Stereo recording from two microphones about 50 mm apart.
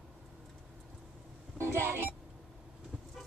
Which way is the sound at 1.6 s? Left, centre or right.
Right.